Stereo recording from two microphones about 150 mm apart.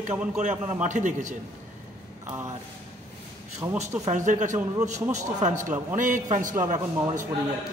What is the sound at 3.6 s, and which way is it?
Speech, 25° right (ahead or behind).